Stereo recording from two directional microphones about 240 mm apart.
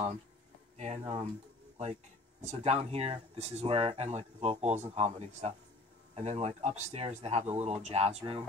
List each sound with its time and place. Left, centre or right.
0.7 s speech: right
2.4 s speech: right